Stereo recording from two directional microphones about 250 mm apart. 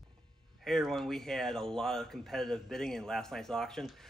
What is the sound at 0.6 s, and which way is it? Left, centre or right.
Speech, centre.